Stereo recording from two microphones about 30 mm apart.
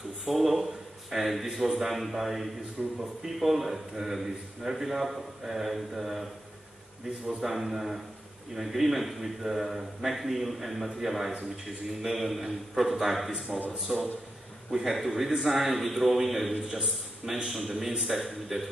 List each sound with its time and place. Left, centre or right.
0.2 s a man's voice: centre
7.4 s a man's voice: centre
17.2 s a man's voice: right
17.6 s a man's voice: centre